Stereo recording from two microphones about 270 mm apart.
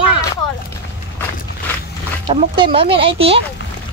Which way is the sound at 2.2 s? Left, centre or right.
Centre.